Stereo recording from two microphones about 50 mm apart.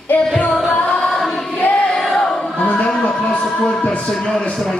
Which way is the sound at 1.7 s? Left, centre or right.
Centre.